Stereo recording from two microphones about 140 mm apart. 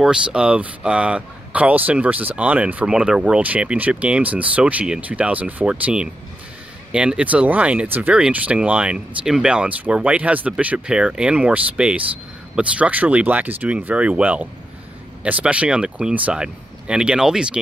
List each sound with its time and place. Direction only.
0.0 s speech: 5° right (ahead or behind)